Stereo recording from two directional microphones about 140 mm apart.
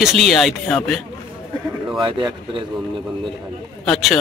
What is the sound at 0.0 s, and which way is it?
Speech, centre (ahead or behind).